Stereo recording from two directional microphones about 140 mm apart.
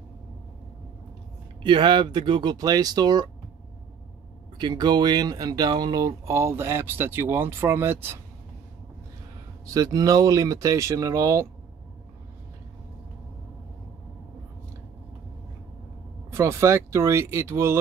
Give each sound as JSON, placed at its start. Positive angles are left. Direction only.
{"t": 1.6, "sound": "speech", "side_deg": -35}
{"t": 4.6, "sound": "speech", "side_deg": -30}
{"t": 9.8, "sound": "speech", "side_deg": -25}
{"t": 16.3, "sound": "speech", "side_deg": -20}